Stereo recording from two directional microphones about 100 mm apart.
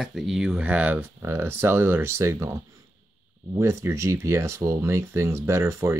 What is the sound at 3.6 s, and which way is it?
Speech, 30° right (ahead or behind).